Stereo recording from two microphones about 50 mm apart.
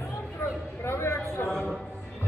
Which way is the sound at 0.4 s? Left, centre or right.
Left.